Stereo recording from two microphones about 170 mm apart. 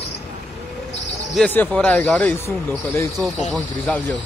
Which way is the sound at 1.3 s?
10° left (ahead or behind).